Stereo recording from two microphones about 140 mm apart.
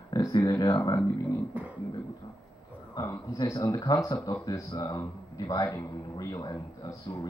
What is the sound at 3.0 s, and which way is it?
Speech, 25° left (ahead or behind).